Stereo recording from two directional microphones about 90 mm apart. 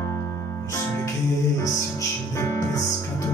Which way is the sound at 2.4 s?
35° left (ahead or behind).